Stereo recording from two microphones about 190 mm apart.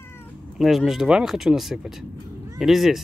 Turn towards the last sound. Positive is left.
turn(degrees=0)  # may be behind; listen again after turning